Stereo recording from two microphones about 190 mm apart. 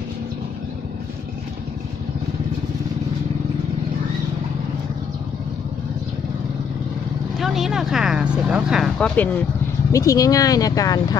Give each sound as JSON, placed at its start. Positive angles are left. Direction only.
{"t": 7.3, "sound": "speech", "side_deg": 0}
{"t": 9.9, "sound": "speech", "side_deg": 15}